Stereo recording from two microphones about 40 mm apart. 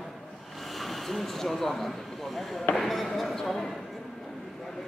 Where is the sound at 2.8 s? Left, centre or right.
Centre.